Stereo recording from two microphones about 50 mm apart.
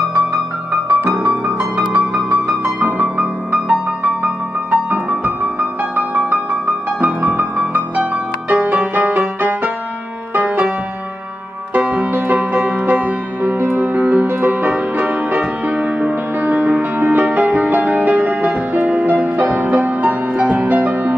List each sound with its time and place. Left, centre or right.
1.4 s music: right
7.1 s music: right
8.7 s music: right
11.7 s music: right